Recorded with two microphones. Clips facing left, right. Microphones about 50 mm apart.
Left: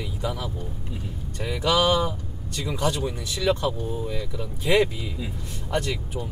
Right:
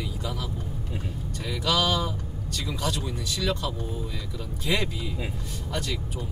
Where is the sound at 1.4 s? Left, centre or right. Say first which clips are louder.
Left 4 dB; left.